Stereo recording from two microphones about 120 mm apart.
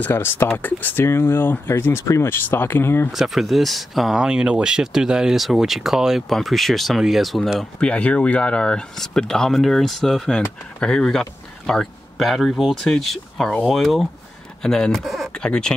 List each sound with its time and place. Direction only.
0.0 s speech: 20° left (ahead or behind)
3.1 s speech: centre (ahead or behind)